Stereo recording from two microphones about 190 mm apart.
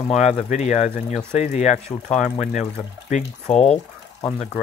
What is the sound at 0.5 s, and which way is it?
Speech, 40° left (ahead or behind).